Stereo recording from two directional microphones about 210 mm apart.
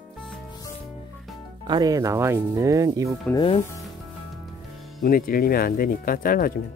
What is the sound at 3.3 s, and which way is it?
Speech, 25° left (ahead or behind).